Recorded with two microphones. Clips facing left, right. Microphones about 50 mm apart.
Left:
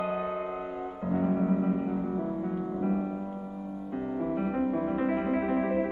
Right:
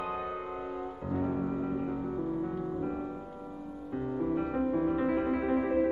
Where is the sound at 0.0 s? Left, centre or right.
Centre.